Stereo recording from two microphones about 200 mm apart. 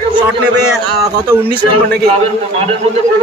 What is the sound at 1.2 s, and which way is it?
Speech, 10° right (ahead or behind).